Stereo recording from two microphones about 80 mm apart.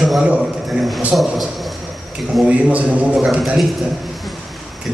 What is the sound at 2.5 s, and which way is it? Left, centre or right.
Speech, centre.